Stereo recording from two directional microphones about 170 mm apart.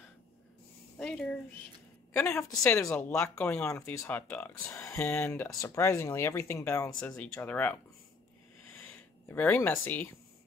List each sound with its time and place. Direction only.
0.9 s speech: 5° left (ahead or behind)
7.0 s speech: 5° left (ahead or behind)
8.7 s a sound: 5° left (ahead or behind)